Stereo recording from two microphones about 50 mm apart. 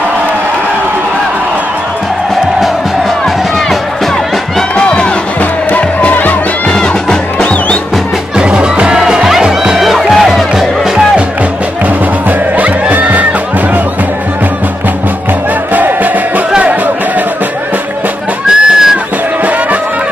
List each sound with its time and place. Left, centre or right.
4.7 s run: left
5.4 s music: left
6.7 s music: centre
8.4 s music: centre
12.3 s music: right
15.7 s music: right
18.5 s a sound: centre